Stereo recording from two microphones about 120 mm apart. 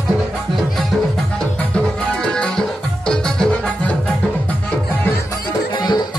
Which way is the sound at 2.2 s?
5° left (ahead or behind).